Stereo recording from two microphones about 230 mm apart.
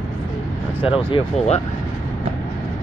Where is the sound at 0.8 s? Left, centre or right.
Left.